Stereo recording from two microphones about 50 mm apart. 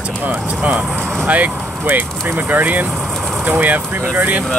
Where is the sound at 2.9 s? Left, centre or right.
Centre.